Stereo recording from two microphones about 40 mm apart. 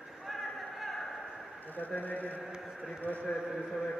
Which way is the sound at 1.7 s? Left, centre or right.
Left.